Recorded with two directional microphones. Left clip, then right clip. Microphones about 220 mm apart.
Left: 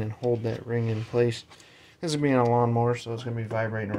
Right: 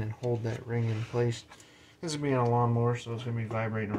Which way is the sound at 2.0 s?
60° left (ahead or behind).